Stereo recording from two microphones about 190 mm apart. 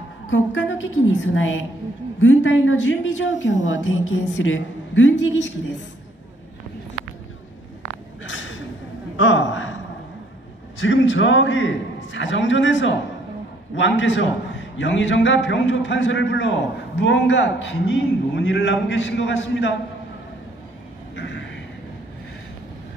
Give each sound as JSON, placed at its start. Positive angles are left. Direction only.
{"t": 0.3, "sound": "a woman's voice", "side_deg": 80}
{"t": 8.2, "sound": "a sound", "side_deg": 85}
{"t": 10.8, "sound": "a man's voice", "side_deg": 75}
{"t": 21.2, "sound": "vehicle", "side_deg": 70}